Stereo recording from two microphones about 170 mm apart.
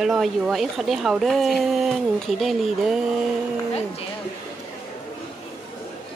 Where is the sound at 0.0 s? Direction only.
Centre (ahead or behind).